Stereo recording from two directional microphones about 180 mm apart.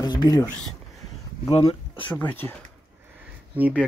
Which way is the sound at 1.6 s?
30° left (ahead or behind).